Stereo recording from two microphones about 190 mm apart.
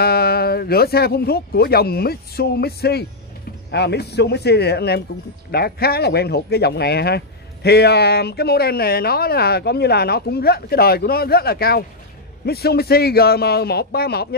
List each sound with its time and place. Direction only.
0.0 s speech: 55° left (ahead or behind)